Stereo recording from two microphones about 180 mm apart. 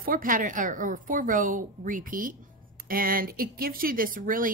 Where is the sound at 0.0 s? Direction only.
50° right (ahead or behind).